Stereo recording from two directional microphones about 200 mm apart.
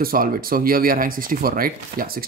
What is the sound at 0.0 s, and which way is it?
A man's voice, 45° right (ahead or behind).